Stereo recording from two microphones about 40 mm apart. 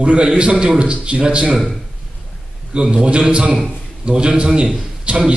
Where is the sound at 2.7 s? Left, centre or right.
Right.